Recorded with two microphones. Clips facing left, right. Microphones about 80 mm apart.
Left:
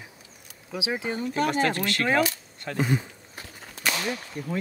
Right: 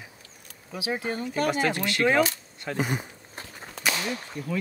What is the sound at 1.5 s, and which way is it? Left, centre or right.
Speech, centre.